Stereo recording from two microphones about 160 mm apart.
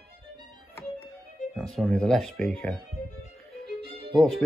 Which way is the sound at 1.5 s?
Centre (ahead or behind).